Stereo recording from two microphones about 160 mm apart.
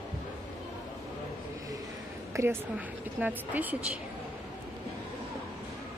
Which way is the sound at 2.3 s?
20° right (ahead or behind).